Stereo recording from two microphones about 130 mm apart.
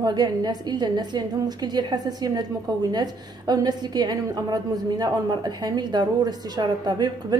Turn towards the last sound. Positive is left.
turn(degrees=-30)  # may be behind; listen again after turning